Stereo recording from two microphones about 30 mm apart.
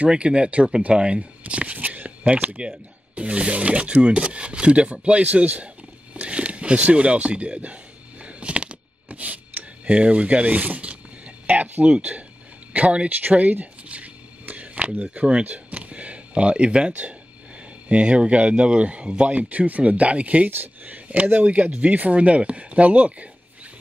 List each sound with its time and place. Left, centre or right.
0.1 s speech: right
1.8 s a sound: right
2.0 s speech: right
6.2 s a sound: right
9.9 s speech: right
12.7 s speech: right
13.9 s a sound: right
15.1 s speech: right
19.2 s speech: right
19.8 s speech: right
20.4 s speech: right
22.1 s speech: right